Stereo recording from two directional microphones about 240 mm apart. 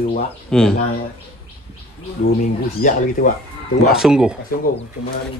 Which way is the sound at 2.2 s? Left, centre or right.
Left.